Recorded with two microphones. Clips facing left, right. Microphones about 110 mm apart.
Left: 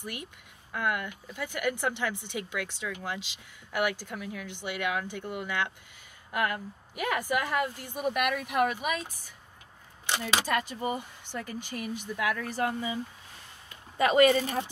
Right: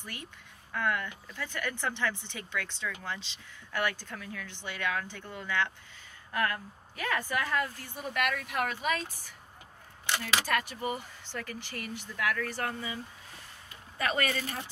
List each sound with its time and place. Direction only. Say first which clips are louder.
0.0 s speech: left 4 dB; 15° left (ahead or behind)